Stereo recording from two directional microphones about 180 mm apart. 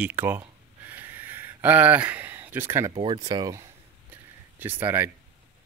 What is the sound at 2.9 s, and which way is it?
Speech, 25° right (ahead or behind).